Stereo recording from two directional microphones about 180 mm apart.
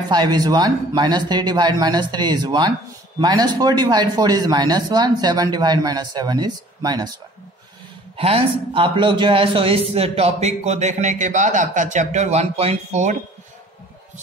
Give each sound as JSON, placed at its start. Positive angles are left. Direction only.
{"t": 0.1, "sound": "speech", "side_deg": -25}
{"t": 8.2, "sound": "a man's voice", "side_deg": -30}